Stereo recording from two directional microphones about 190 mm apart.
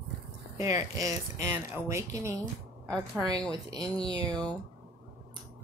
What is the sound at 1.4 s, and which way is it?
Speech, 15° right (ahead or behind).